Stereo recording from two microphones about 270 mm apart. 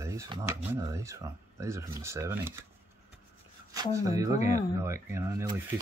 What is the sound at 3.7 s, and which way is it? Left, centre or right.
Speech, centre.